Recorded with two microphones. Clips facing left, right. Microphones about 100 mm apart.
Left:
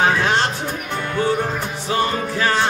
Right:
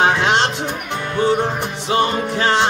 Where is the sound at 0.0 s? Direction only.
20° right (ahead or behind).